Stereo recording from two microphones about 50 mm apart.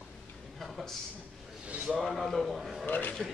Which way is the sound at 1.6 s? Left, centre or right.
Right.